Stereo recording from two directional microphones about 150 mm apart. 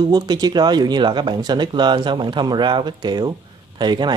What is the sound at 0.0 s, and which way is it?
Speech, 30° right (ahead or behind).